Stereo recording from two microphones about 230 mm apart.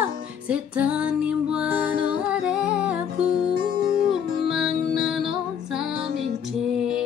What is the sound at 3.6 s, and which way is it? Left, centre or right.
Music, right.